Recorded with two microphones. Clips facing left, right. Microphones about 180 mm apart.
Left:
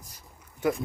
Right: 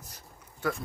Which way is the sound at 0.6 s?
20° left (ahead or behind).